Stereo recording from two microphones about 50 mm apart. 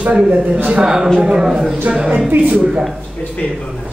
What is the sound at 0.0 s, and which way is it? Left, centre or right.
Speech, right.